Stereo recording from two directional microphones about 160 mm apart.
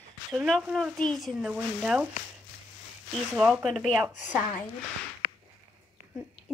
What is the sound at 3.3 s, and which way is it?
Speech, 5° right (ahead or behind).